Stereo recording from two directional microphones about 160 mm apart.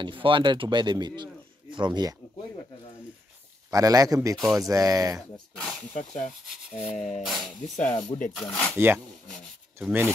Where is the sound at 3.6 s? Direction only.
20° right (ahead or behind).